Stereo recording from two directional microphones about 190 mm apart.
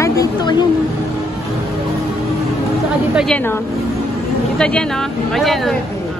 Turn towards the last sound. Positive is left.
turn(degrees=0)  # may be behind; listen again after turning